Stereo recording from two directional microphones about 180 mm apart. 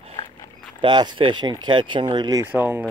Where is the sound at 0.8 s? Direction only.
25° right (ahead or behind).